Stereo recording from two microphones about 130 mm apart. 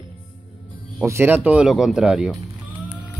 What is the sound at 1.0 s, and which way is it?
Speech, 20° right (ahead or behind).